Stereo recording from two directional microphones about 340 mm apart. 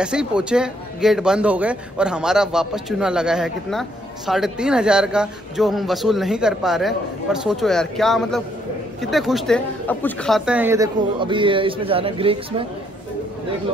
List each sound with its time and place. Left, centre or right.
0.0 s a man's voice: centre